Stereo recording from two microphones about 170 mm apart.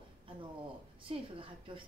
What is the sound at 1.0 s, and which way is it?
Speech, 30° right (ahead or behind).